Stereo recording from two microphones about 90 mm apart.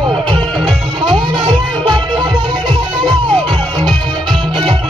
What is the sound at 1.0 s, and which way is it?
Music, 55° right (ahead or behind).